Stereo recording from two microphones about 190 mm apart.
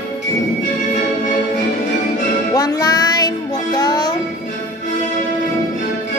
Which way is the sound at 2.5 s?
20° left (ahead or behind).